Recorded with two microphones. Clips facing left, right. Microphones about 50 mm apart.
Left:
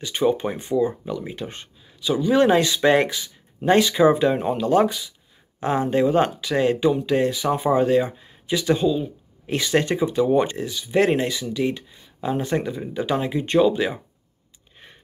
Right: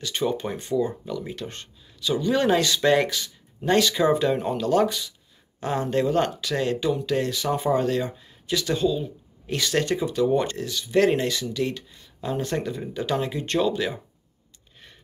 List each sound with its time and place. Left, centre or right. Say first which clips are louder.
0.0 s speech: left 5 dB; centre